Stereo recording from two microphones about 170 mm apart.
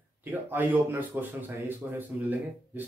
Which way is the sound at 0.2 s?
10° right (ahead or behind).